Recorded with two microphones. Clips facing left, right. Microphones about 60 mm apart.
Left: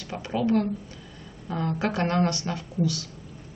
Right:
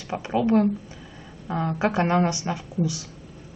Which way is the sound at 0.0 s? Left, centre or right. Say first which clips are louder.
Right 3 dB; centre.